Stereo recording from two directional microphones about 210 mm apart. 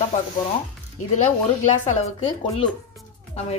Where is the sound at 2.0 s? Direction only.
30° left (ahead or behind).